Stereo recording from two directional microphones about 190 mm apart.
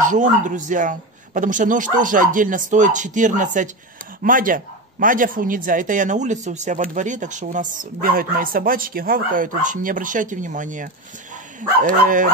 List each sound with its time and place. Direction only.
0.0 s speech: 40° right (ahead or behind)